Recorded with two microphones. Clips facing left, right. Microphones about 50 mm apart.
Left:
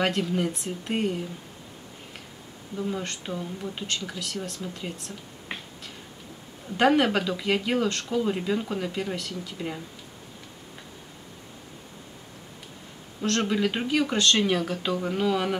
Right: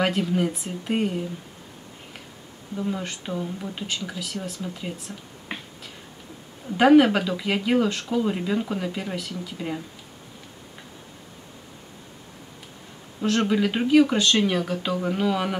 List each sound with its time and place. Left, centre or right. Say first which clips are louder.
0.0 s speech: right 2 dB; centre
2.7 s speech: right 2 dB; centre
6.8 s speech: right 5 dB; centre
13.2 s speech: right 3 dB; centre